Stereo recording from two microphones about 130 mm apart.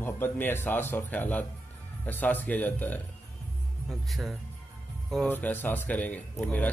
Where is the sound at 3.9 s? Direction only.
Centre (ahead or behind).